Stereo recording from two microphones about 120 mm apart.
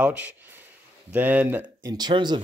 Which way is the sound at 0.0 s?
10° right (ahead or behind).